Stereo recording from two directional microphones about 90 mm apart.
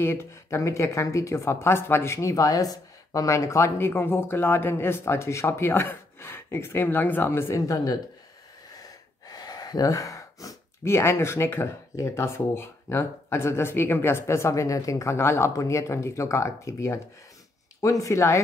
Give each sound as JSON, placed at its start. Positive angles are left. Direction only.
{"t": 0.0, "sound": "speech", "side_deg": 25}
{"t": 9.3, "sound": "speech", "side_deg": 45}